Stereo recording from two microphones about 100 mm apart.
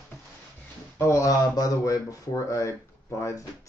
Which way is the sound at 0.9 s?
30° left (ahead or behind).